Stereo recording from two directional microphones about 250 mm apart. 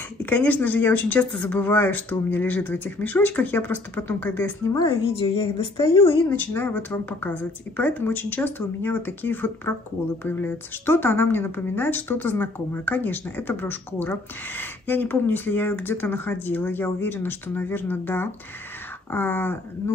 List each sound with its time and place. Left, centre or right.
0.2 s speech: centre; by 6.1 s left
6.3 s speech: centre